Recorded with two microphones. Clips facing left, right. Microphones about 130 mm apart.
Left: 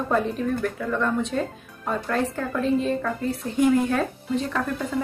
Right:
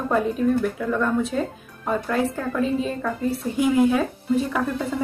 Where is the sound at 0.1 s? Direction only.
5° right (ahead or behind).